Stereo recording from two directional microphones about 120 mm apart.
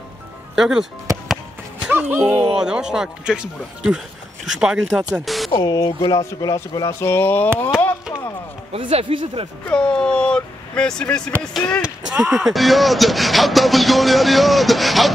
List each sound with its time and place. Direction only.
0.6 s speech: 5° right (ahead or behind)
1.9 s speech: 15° right (ahead or behind)
2.5 s speech: 5° right (ahead or behind)
5.6 s speech: 30° left (ahead or behind)
8.7 s speech: 50° right (ahead or behind)
9.7 s a sound: 5° left (ahead or behind)
11.5 s speech: 10° left (ahead or behind)
11.8 s speech: 5° right (ahead or behind)